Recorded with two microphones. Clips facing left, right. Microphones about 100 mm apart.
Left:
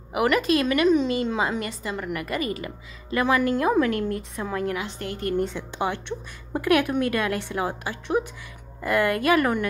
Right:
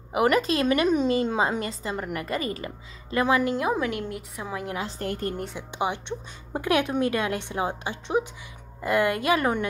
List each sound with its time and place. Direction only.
0.1 s a woman's voice: 30° right (ahead or behind)
3.5 s a woman's voice: 15° right (ahead or behind)
4.7 s a woman's voice: 35° right (ahead or behind)
5.6 s a woman's voice: 15° right (ahead or behind)